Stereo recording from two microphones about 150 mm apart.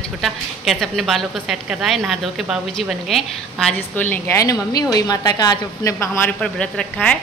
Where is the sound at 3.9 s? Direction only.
10° left (ahead or behind).